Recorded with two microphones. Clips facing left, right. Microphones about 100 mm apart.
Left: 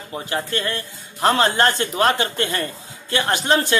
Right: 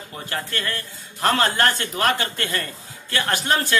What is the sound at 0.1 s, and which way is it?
A man's voice, 20° left (ahead or behind).